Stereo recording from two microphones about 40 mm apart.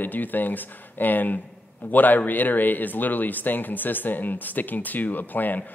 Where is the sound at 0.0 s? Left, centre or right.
Left.